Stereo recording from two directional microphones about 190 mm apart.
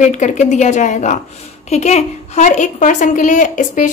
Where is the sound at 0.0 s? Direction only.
40° left (ahead or behind).